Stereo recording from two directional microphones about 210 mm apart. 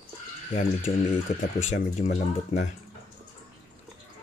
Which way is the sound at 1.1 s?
35° left (ahead or behind).